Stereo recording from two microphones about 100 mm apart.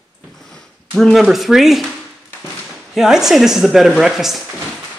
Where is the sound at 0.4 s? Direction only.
5° left (ahead or behind).